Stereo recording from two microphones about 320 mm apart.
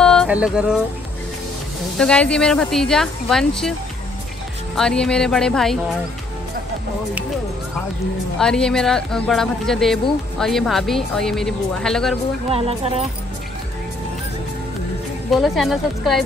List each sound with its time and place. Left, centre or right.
0.0 s music: centre
2.0 s speech: centre
4.7 s speech: centre
8.4 s speech: centre
12.4 s speech: centre
15.3 s speech: centre